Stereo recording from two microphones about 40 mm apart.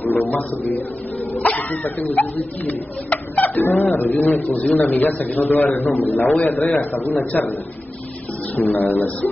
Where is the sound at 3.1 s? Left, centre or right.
Left.